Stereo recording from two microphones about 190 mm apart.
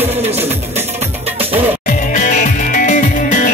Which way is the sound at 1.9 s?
40° left (ahead or behind).